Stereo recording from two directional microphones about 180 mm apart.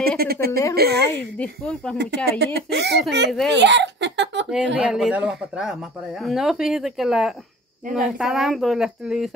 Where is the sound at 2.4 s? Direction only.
70° right (ahead or behind).